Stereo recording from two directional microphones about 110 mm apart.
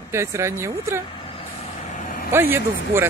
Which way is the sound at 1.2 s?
75° left (ahead or behind).